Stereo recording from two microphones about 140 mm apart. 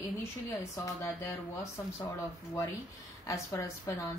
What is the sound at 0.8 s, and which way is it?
A woman's voice, 20° left (ahead or behind).